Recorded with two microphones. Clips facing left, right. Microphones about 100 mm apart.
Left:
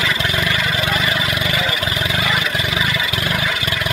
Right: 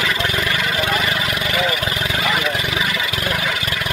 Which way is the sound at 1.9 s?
15° left (ahead or behind).